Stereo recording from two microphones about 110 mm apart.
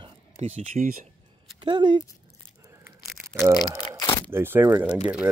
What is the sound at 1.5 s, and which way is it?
Speech, 45° right (ahead or behind).